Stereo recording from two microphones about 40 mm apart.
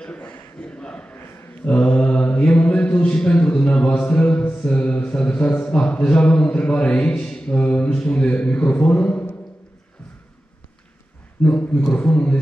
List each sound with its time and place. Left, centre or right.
0.6 s a sound: left
1.6 s mantra: left
3.2 s a man's voice: left
4.1 s a sound: left
4.6 s mantra: left
5.7 s a man's voice: left
11.4 s a man's voice: left